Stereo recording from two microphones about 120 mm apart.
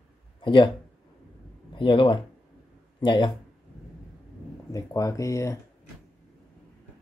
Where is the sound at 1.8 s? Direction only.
45° left (ahead or behind).